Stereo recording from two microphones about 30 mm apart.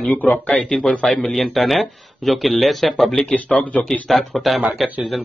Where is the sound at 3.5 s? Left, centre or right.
Centre.